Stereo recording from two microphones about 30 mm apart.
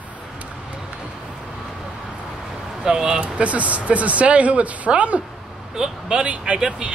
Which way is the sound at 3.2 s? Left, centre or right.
Right.